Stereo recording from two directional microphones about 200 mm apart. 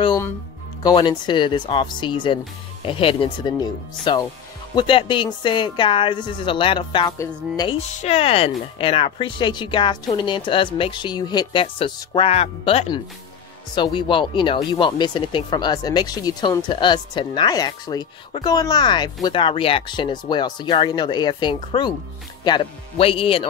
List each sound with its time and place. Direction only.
0.0 s music: 20° left (ahead or behind)
0.8 s speech: 20° left (ahead or behind)
8.0 s speech: 30° left (ahead or behind)